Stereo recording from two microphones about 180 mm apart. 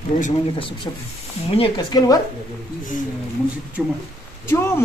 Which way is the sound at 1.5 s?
25° left (ahead or behind).